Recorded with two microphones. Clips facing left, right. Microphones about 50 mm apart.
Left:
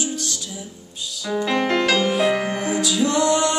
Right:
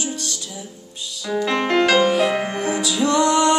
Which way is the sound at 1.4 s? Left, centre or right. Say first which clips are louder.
Right 2 dB; centre.